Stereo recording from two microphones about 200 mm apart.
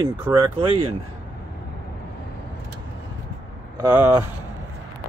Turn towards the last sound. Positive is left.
turn(degrees=-10)  # may be behind; listen again after turning